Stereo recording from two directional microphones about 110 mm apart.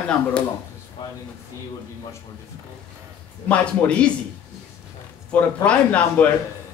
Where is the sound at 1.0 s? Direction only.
45° left (ahead or behind).